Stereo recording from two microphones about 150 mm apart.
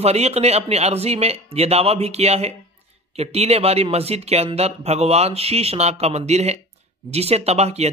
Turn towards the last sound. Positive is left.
turn(degrees=-45)  # may be behind; listen again after turning